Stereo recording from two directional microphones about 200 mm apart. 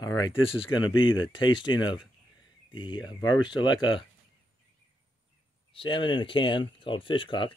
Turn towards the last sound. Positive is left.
turn(degrees=25)  # may be behind; listen again after turning